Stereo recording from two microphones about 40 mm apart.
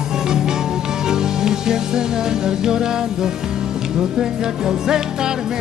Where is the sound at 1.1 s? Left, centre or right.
Centre.